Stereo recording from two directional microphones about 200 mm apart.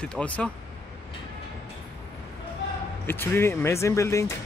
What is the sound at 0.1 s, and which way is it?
Speech, 5° left (ahead or behind).